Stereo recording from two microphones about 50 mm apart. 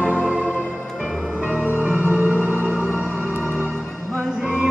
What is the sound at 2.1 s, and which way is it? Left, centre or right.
Music, right.